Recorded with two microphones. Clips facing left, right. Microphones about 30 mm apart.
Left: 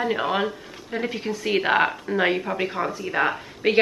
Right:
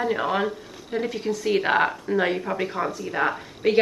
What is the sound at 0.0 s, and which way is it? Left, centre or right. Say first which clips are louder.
Speech: even; centre.